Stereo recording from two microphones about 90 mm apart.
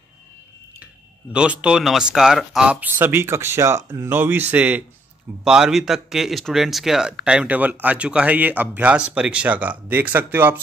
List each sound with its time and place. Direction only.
1.3 s speech: 10° right (ahead or behind)
5.4 s speech: 5° right (ahead or behind); by 10.6 s 20° right (ahead or behind)